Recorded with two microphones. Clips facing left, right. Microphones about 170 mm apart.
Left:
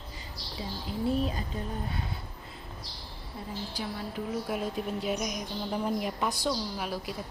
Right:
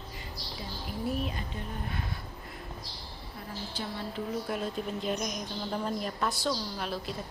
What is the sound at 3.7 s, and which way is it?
Music, 5° left (ahead or behind).